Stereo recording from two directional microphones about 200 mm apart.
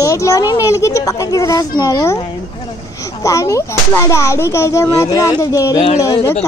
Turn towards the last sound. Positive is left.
turn(degrees=15)  # may be behind; listen again after turning